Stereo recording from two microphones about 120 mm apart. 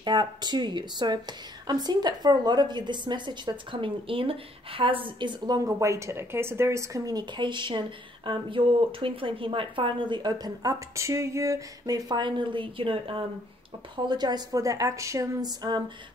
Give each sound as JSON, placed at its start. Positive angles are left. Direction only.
{"t": 0.0, "sound": "speech", "side_deg": -40}